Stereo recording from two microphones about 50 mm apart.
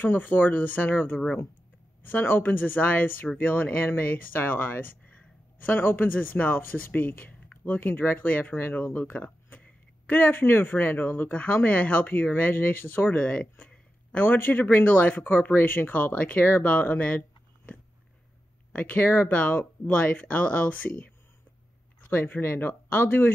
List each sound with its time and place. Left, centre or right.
0.0 s speech: left
2.2 s speech: left
8.3 s speech: left
10.0 s speech: left
13.1 s speech: left
14.8 s speech: left
18.7 s speech: left
22.1 s speech: left